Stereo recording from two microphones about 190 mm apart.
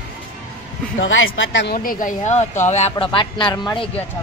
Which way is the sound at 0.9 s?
85° left.